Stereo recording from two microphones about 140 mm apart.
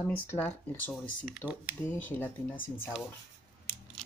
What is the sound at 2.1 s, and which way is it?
Speech, 15° left (ahead or behind).